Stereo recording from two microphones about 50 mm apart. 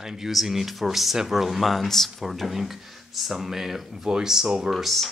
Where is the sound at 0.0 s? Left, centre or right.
Centre.